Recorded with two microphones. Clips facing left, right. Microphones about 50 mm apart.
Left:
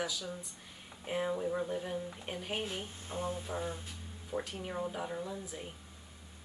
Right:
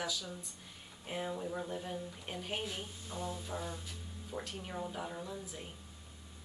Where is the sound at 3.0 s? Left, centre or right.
Left.